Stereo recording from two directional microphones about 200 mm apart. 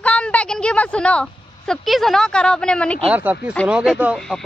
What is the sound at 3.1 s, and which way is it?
Speech, 10° right (ahead or behind).